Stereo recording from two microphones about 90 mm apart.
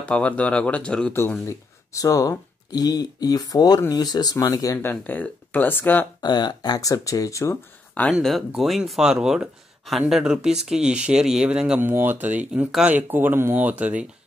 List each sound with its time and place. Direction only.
0.0 s speech: 15° left (ahead or behind)
1.5 s speech: 35° left (ahead or behind)
4.8 s speech: 20° left (ahead or behind)
6.2 s speech: 50° left (ahead or behind); by 7.5 s 35° left (ahead or behind)
7.9 s speech: 15° left (ahead or behind)
8.2 s speech: centre (ahead or behind)
11.8 s speech: 25° right (ahead or behind)